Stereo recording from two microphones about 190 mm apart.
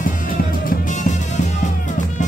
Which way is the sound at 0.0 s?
50° left (ahead or behind).